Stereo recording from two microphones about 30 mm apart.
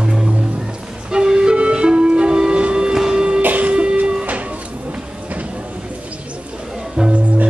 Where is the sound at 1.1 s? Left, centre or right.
Right.